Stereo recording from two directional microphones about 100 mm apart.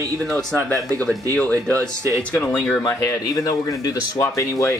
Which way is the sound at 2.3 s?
20° left (ahead or behind).